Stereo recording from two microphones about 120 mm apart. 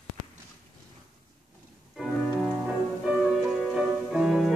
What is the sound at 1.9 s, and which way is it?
Music, centre (ahead or behind).